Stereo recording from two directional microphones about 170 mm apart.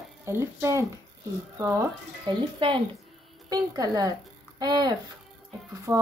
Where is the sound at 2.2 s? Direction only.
30° right (ahead or behind).